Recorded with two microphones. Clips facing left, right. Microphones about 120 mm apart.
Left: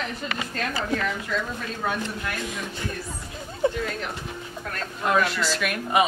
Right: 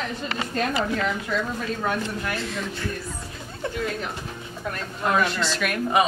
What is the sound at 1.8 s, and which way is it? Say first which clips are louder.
Speech: right 2 dB; 10° left (ahead or behind).